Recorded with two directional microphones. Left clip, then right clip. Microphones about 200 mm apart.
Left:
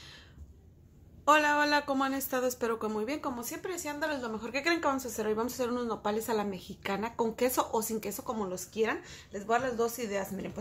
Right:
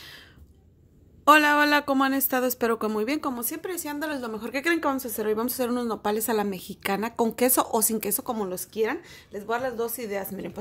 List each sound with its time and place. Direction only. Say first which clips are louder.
1.2 s a woman's voice: right 7 dB; 45° right (ahead or behind)